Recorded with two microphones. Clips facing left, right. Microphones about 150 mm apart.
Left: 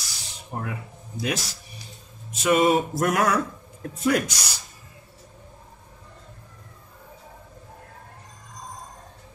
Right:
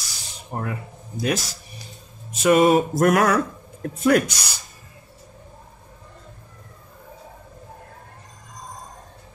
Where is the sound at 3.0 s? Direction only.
60° right (ahead or behind).